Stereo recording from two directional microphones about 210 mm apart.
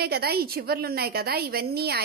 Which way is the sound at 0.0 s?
50° right (ahead or behind).